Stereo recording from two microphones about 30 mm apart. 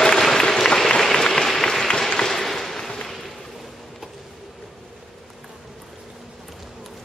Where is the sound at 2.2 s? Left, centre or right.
Centre.